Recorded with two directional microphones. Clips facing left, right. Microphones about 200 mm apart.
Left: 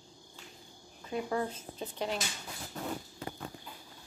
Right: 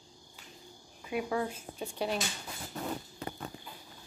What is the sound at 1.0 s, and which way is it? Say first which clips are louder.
Speech: right 1 dB; 5° right (ahead or behind).